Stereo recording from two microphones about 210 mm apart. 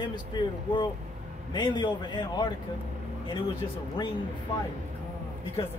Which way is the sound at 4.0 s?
20° left (ahead or behind).